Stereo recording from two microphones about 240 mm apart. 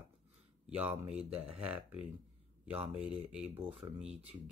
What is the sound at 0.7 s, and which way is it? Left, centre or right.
Speech, centre.